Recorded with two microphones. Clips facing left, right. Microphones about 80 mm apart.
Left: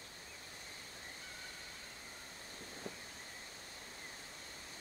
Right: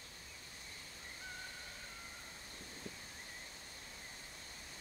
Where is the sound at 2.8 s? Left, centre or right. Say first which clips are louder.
Left 3 dB; left.